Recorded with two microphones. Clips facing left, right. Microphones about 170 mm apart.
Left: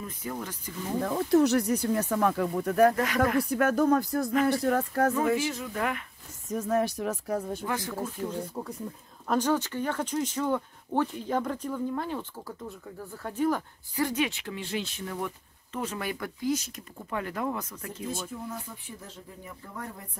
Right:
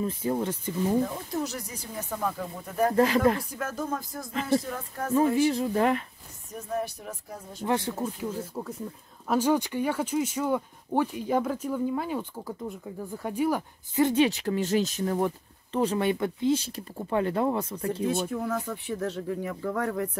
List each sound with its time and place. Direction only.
0.0 s speech: 30° right (ahead or behind)
1.0 s speech: 70° left (ahead or behind)
3.0 s speech: 30° right (ahead or behind)
3.3 s speech: 65° left (ahead or behind)
5.4 s speech: 30° right (ahead or behind)
6.5 s speech: 90° left; by 7.6 s 70° left (ahead or behind)
7.6 s speech: 30° right (ahead or behind)
8.6 s speech: 10° left (ahead or behind)
9.3 s speech: 10° right (ahead or behind)
13.9 s speech: 25° right (ahead or behind)
18.3 s speech: 80° right